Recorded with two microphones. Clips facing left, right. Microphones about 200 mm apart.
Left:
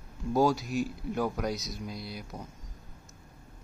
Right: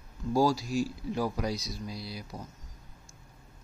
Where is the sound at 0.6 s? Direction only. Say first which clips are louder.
Right 1 dB; 55° left (ahead or behind).